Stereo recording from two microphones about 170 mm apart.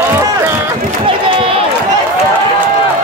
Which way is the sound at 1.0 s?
35° right (ahead or behind).